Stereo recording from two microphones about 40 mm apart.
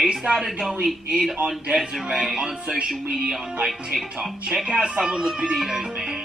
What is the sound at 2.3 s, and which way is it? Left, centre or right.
Speech, right.